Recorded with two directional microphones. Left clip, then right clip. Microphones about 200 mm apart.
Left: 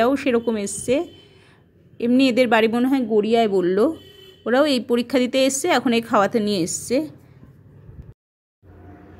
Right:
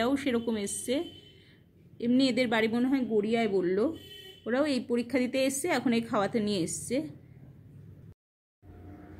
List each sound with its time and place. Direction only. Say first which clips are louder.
0.0 s speech: left 10 dB; 20° left (ahead or behind)